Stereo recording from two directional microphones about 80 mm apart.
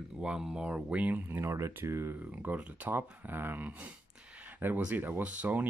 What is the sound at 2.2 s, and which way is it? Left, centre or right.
Speech, right.